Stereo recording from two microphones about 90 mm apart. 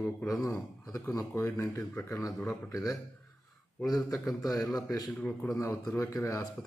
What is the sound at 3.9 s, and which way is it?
Speech, 40° left (ahead or behind).